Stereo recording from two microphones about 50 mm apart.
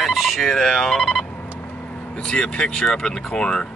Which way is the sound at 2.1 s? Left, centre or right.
Left.